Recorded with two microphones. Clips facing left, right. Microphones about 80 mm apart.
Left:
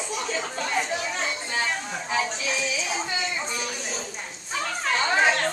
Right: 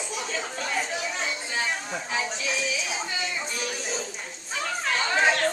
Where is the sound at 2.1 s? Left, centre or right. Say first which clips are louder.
Left 3 dB; centre.